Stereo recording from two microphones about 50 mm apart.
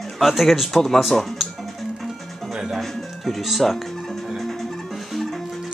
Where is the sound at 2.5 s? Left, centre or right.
Centre.